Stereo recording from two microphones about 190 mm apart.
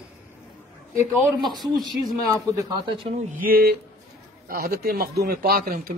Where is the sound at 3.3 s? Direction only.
50° right (ahead or behind).